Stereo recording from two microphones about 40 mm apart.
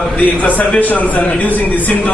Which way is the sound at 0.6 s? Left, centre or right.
Left.